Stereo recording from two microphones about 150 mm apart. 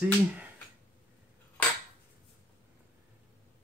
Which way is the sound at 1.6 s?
10° left (ahead or behind).